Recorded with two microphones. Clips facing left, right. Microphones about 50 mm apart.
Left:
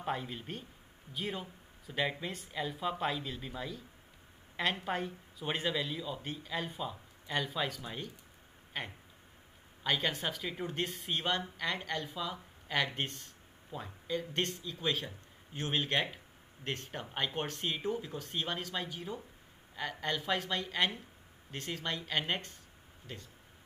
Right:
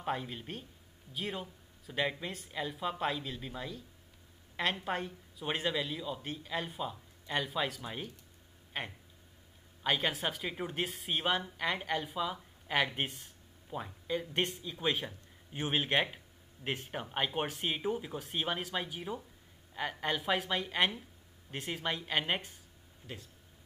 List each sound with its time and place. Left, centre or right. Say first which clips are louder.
0.0 s a man's voice: right 1 dB; centre
4.8 s a man's voice: even; centre
23.0 s speech: right 1 dB; left